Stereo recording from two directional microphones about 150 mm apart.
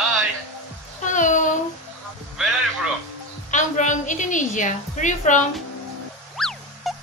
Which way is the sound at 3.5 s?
55° left (ahead or behind).